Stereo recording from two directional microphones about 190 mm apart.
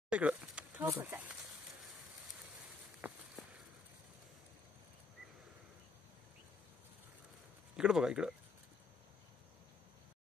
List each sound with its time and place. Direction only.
0.1 s a sound: 5° right (ahead or behind)
3.0 s walk: 10° right (ahead or behind)
7.7 s speech: 5° right (ahead or behind)